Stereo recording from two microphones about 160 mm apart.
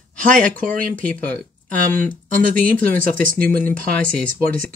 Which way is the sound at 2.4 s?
60° right (ahead or behind).